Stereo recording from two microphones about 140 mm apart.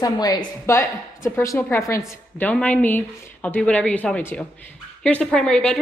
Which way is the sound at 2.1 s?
10° left (ahead or behind).